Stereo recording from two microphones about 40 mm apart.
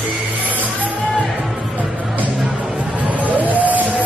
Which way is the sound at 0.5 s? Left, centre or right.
Right.